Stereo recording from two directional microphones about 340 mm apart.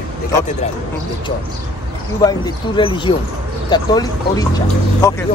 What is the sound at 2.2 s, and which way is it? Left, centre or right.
Speech, centre.